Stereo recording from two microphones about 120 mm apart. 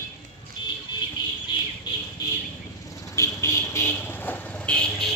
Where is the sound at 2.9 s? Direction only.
25° left (ahead or behind).